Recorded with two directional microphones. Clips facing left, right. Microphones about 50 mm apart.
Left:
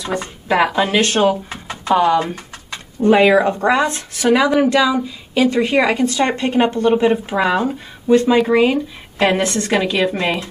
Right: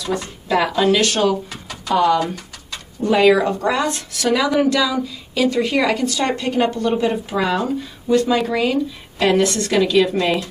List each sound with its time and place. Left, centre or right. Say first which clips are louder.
0.0 s a woman's voice: left 1 dB; left